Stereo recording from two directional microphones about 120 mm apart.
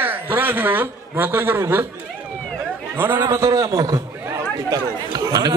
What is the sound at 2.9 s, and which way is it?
A man's voice, 20° right (ahead or behind).